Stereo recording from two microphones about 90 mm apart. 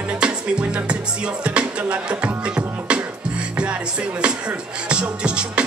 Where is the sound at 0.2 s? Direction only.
10° right (ahead or behind).